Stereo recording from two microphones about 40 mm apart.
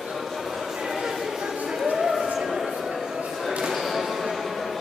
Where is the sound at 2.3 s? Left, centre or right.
Centre.